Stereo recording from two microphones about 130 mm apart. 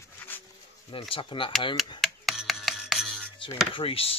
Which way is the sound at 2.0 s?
Centre (ahead or behind).